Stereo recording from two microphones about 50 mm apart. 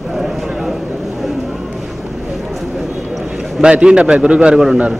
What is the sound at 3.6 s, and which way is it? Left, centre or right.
A man's voice, centre.